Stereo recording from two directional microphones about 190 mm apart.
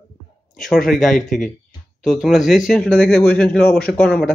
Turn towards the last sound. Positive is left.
turn(degrees=5)  # may be behind; listen again after turning